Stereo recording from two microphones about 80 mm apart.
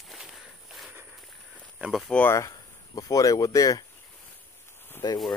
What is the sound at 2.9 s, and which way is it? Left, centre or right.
Speech, left.